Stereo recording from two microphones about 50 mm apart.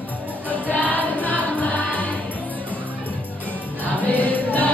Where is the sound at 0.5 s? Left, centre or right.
Left.